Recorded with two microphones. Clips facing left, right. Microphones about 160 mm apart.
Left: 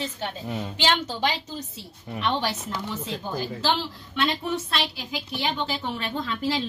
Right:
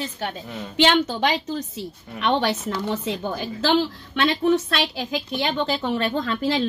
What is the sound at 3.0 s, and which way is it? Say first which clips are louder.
A woman's voice: right 3 dB; 75° right (ahead or behind).